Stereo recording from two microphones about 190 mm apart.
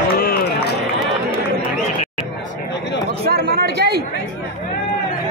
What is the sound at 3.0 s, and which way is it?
Chatter, 55° right (ahead or behind).